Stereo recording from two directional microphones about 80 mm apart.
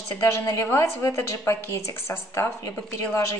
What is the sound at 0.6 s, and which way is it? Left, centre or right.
A woman's voice, left.